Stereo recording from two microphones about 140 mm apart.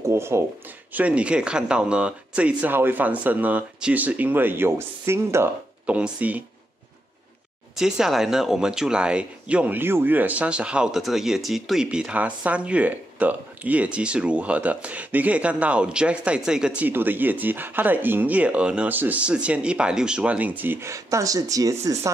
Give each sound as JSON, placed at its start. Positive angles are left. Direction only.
{"t": 0.1, "sound": "speech", "side_deg": -20}
{"t": 7.7, "sound": "speech", "side_deg": -5}